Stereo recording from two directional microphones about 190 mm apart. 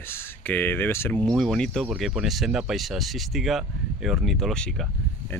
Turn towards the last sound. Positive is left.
turn(degrees=5)  # may be behind; listen again after turning